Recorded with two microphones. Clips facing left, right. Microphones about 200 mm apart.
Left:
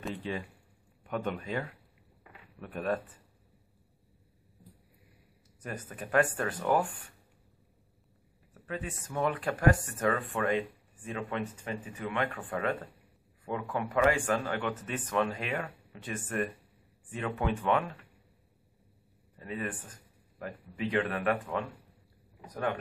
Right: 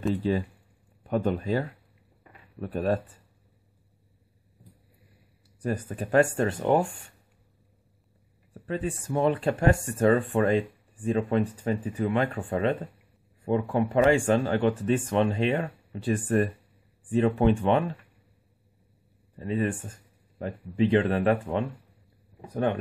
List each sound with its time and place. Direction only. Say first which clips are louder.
0.1 s a man's voice: right 10 dB; 35° right (ahead or behind)
5.6 s speech: right 10 dB; 30° right (ahead or behind)
8.5 s a man's voice: right 8 dB; 30° right (ahead or behind)
19.3 s a man's voice: right 9 dB; 30° right (ahead or behind)